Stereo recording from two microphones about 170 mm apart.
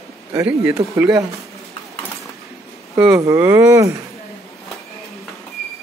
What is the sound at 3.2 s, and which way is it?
Speech, 20° right (ahead or behind).